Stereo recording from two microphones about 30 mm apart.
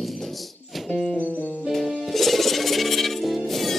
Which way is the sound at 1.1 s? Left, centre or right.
Left.